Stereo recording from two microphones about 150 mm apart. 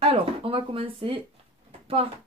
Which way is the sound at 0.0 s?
35° right (ahead or behind).